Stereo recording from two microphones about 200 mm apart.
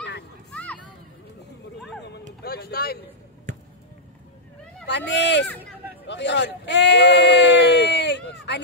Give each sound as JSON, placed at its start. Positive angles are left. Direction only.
{"t": 0.5, "sound": "a sound", "side_deg": 5}
{"t": 2.4, "sound": "speech", "side_deg": 50}
{"t": 4.8, "sound": "speech", "side_deg": 60}